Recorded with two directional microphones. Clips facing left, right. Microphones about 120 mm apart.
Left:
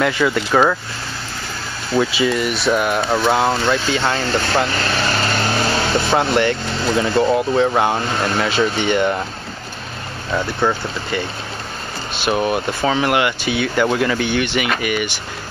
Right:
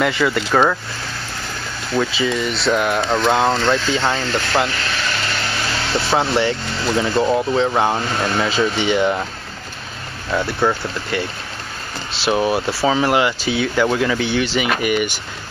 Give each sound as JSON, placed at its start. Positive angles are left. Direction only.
{"t": 0.0, "sound": "speech", "side_deg": 0}
{"t": 2.0, "sound": "speech", "side_deg": 5}
{"t": 4.0, "sound": "speech", "side_deg": -10}
{"t": 4.7, "sound": "vehicle", "side_deg": 40}
{"t": 6.1, "sound": "speech", "side_deg": 0}
{"t": 8.5, "sound": "speech", "side_deg": -10}
{"t": 10.3, "sound": "speech", "side_deg": 0}
{"t": 12.3, "sound": "speech", "side_deg": 0}
{"t": 13.5, "sound": "speech", "side_deg": 5}